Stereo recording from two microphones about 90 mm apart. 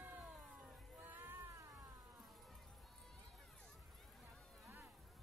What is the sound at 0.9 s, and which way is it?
Cat, 20° right (ahead or behind).